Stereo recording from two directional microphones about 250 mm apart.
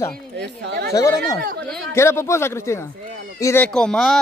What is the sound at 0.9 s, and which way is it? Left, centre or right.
Speech, centre.